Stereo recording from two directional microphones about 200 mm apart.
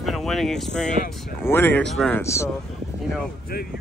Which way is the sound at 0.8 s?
40° left (ahead or behind).